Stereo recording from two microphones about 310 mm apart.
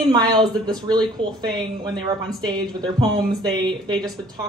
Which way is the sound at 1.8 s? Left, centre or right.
Centre.